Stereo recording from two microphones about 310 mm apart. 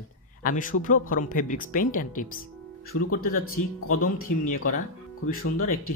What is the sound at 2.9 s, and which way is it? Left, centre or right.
Speech, left.